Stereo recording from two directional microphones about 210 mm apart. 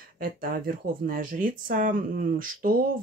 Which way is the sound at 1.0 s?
40° right (ahead or behind).